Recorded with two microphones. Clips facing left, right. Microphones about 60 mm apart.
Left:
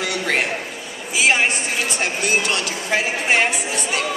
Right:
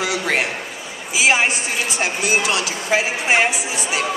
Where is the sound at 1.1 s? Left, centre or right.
Centre.